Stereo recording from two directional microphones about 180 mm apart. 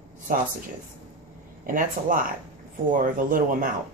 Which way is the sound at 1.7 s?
50° right (ahead or behind).